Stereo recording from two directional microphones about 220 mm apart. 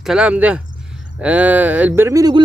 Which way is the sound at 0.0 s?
5° right (ahead or behind).